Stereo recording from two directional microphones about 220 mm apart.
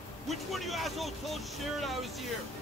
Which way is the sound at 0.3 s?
Centre (ahead or behind).